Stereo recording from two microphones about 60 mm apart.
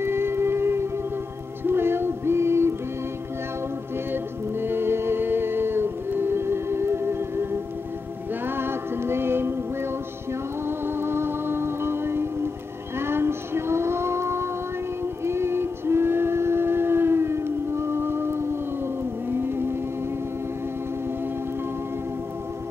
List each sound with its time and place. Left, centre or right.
0.0 s music: right
4.1 s music: right
8.5 s music: right
10.9 s music: right